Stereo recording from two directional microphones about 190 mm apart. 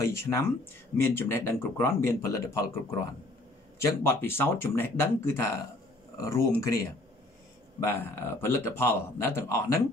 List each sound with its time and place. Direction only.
0.0 s speech: 15° left (ahead or behind)
3.8 s speech: 10° left (ahead or behind)
7.8 s speech: 10° left (ahead or behind)